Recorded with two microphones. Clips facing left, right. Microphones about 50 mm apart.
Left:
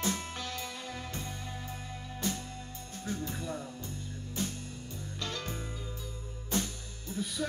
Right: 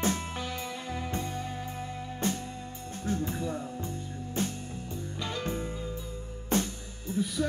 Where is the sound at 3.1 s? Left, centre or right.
Right.